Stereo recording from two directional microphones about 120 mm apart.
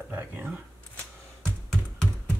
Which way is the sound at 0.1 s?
15° right (ahead or behind).